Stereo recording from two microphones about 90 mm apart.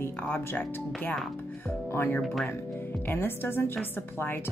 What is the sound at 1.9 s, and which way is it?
Speech, 25° left (ahead or behind).